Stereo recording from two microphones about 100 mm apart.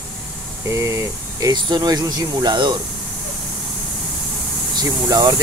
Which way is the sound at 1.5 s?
45° right (ahead or behind).